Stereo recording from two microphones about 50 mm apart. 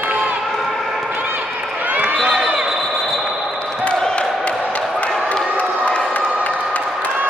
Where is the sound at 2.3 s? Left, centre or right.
Right.